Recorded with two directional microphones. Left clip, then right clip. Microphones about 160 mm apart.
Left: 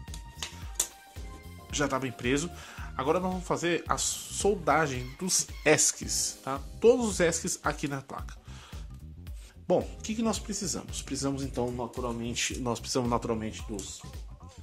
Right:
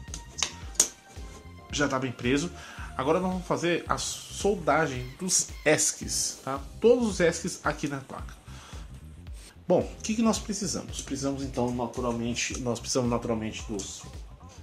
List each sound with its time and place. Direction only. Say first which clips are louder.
1.7 s speech: right 2 dB; 40° left (ahead or behind)
9.7 s speech: right 2 dB; 35° left (ahead or behind)
10.0 s speech: right 4 dB; 25° left (ahead or behind); by 11.3 s 45° left (ahead or behind)
11.3 s speech: right 3 dB; 75° left (ahead or behind)
12.6 s speech: right 4 dB; 45° left (ahead or behind)
13.2 s speech: right 2 dB; 70° left (ahead or behind)